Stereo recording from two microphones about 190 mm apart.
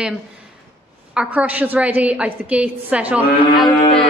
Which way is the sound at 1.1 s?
10° right (ahead or behind).